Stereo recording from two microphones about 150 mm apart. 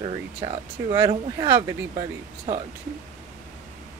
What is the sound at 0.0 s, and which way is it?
Speech, 40° right (ahead or behind).